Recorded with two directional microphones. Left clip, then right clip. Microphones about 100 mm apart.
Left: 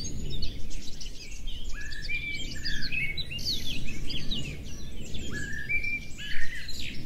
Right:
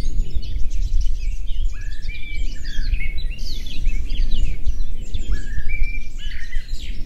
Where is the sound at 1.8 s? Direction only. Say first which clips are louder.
Left 5 dB; 20° left (ahead or behind).